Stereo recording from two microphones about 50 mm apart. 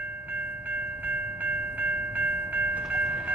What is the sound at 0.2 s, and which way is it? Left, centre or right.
Train, right.